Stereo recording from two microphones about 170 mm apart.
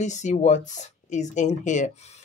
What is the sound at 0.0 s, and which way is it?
Speech, 45° left (ahead or behind).